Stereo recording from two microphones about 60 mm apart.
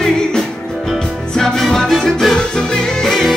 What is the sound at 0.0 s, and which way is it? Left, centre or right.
Music, centre.